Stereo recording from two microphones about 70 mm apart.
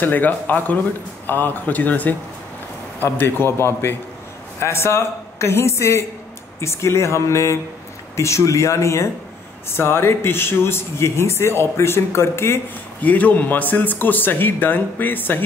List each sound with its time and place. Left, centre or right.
0.0 s speech: left
13.0 s speech: left